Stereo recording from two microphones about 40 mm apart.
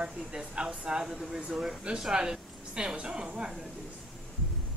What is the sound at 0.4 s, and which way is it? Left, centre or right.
Speech, right.